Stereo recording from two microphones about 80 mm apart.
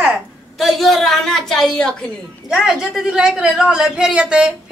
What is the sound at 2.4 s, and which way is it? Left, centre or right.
A woman's voice, centre.